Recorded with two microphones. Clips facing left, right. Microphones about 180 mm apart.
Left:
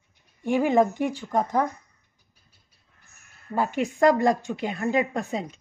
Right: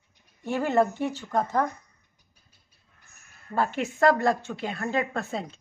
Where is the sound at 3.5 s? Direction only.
10° left (ahead or behind).